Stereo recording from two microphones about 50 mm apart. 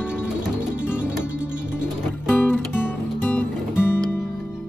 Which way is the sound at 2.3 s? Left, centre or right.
Left.